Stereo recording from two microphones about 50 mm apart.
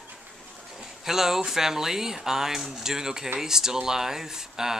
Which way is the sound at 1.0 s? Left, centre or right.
Centre.